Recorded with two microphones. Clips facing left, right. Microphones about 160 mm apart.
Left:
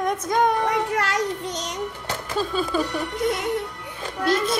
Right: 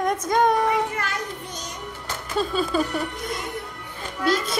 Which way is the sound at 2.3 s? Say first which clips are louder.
Right 1 dB; centre (ahead or behind).